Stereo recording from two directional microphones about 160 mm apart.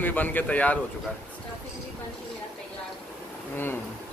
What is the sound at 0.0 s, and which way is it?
Speech, 10° left (ahead or behind).